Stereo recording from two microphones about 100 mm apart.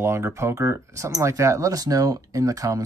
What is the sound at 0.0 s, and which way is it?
Speech, 30° right (ahead or behind).